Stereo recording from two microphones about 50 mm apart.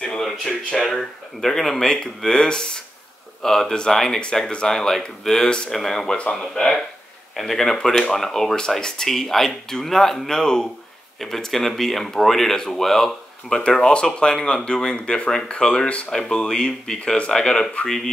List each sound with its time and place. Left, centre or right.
0.5 s speech: centre
13.5 s speech: centre